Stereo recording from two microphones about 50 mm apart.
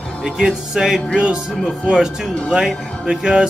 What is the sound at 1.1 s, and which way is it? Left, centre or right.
Speech, centre.